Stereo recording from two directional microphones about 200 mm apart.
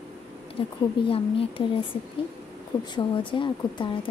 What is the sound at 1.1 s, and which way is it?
Speech, 30° left (ahead or behind).